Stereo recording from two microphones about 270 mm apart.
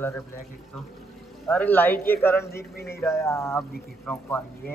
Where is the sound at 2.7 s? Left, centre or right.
Left.